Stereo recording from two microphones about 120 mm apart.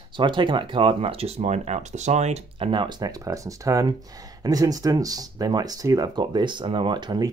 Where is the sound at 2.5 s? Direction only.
45° right (ahead or behind).